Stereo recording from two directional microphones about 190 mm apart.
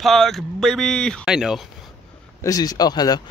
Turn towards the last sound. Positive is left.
turn(degrees=20)  # may be behind; listen again after turning